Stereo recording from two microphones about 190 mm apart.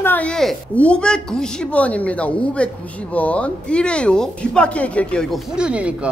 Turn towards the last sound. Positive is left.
turn(degrees=-5)  # may be behind; listen again after turning